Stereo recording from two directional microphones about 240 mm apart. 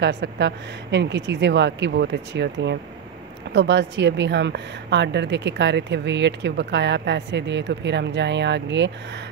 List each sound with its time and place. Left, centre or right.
0.0 s a woman's voice: right